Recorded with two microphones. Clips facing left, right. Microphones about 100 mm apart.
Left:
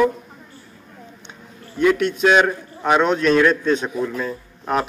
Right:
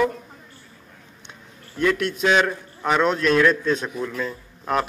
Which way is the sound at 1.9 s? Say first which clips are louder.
Left 4 dB; centre (ahead or behind).